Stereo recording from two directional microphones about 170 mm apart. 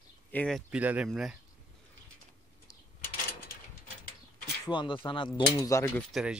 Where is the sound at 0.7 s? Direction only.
10° right (ahead or behind).